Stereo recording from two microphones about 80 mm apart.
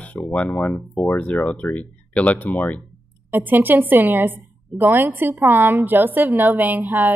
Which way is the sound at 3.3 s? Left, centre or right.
Right.